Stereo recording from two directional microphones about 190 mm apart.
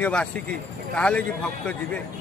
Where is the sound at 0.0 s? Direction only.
5° left (ahead or behind).